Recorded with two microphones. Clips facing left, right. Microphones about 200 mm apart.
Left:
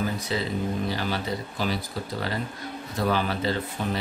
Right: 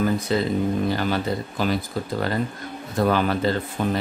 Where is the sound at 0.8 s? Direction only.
50° right (ahead or behind).